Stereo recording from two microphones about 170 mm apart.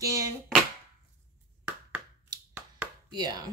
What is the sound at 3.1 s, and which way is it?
Speech, 25° right (ahead or behind).